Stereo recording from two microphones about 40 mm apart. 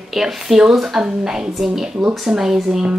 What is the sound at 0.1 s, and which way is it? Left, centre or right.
Speech, centre.